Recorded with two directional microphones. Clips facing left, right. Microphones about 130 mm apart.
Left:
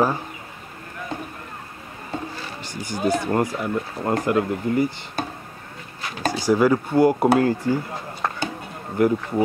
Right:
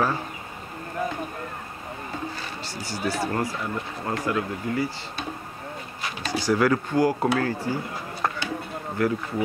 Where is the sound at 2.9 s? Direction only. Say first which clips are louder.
Left 5 dB; 50° left (ahead or behind).